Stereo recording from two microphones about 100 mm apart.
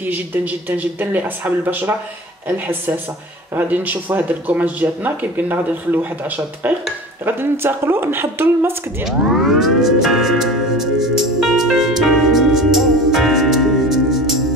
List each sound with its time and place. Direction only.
0.0 s speech: 20° right (ahead or behind)
9.0 s music: 5° right (ahead or behind)